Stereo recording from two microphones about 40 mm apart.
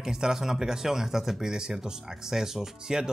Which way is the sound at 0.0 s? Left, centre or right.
Centre.